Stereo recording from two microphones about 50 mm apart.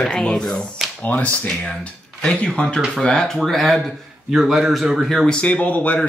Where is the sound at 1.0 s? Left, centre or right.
Left.